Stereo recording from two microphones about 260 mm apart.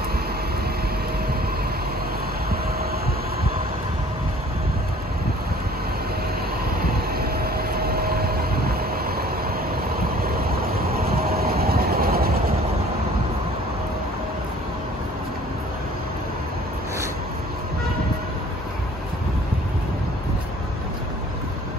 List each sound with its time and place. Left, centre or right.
7.2 s vehicle: right
11.2 s vehicle: right